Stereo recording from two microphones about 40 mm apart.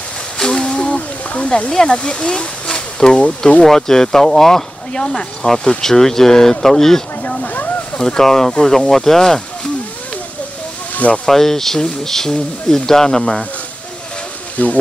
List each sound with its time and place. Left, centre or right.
0.6 s a sound: left
1.7 s speech: centre
3.2 s speech: left
3.6 s speech: centre
7.4 s a sound: left
8.0 s speech: centre
11.2 s speech: centre
14.6 s speech: left